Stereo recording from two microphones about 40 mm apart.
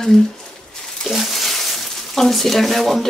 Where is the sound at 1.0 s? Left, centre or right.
Centre.